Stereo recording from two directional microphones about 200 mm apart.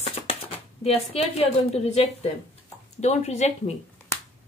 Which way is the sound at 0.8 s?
30° left (ahead or behind).